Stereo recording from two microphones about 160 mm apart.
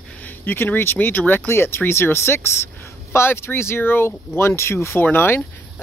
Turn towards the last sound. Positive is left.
turn(degrees=15)  # may be behind; listen again after turning